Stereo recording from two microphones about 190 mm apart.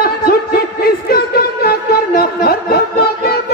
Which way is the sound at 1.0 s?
55° left (ahead or behind).